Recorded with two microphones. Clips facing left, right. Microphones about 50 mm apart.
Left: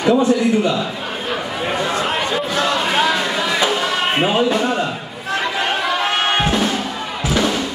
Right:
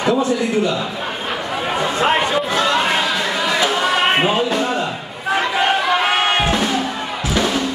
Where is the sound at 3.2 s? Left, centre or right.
Centre.